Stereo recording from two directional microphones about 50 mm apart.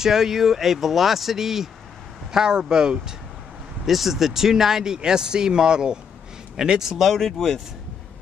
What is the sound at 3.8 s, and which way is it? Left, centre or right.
Speech, centre.